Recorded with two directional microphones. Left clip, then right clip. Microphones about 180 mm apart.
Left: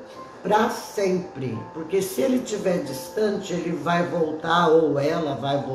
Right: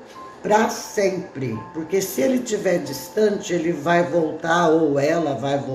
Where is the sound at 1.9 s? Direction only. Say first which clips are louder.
Right 2 dB; 35° right (ahead or behind).